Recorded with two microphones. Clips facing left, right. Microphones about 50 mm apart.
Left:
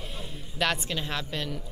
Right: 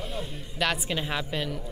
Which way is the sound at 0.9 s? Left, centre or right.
Centre.